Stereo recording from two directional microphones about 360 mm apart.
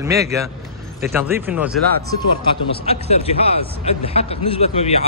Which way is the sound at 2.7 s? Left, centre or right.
Centre.